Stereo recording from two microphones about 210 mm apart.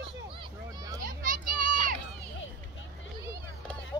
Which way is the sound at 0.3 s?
20° right (ahead or behind).